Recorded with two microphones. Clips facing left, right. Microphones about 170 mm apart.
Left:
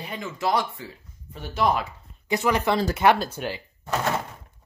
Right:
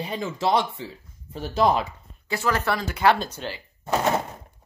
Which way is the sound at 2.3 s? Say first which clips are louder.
Left 2 dB; 15° left (ahead or behind).